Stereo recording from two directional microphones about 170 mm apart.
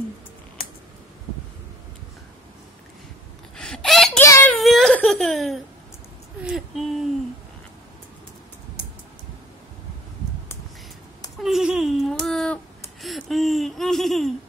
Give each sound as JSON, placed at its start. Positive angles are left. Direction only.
{"t": 3.5, "sound": "chicken", "side_deg": 5}
{"t": 4.2, "sound": "a sound", "side_deg": 15}
{"t": 4.6, "sound": "whimper", "side_deg": 0}
{"t": 6.4, "sound": "speech", "side_deg": 0}
{"t": 11.4, "sound": "a sound", "side_deg": 0}
{"t": 13.0, "sound": "laughter", "side_deg": 0}